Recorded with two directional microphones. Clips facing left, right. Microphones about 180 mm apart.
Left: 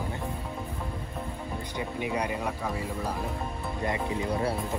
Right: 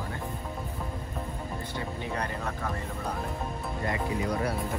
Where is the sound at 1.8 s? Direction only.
15° left (ahead or behind).